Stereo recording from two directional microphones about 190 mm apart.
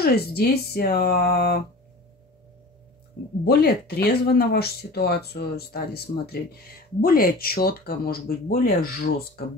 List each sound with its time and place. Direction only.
0.0 s speech: 55° left (ahead or behind)
3.4 s speech: 55° left (ahead or behind)